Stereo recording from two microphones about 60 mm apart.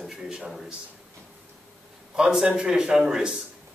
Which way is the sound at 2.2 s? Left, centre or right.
Centre.